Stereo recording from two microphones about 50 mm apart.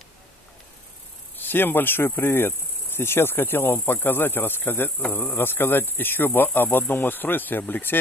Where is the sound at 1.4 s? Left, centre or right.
Left.